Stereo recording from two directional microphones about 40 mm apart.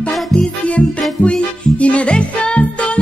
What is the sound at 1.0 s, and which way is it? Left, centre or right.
Music, left.